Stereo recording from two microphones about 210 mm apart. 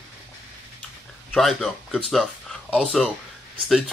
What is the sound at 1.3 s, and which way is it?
Speech, centre (ahead or behind).